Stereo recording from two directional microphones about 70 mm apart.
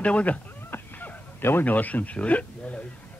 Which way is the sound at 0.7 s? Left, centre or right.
Left.